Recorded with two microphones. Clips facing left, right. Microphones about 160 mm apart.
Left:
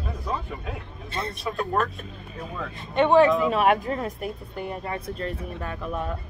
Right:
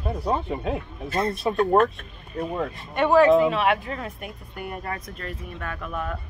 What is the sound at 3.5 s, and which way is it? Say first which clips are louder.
Speech: left 2 dB; 40° left (ahead or behind).